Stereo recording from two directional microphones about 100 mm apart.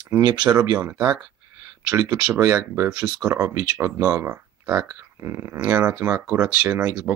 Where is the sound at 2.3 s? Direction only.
35° right (ahead or behind).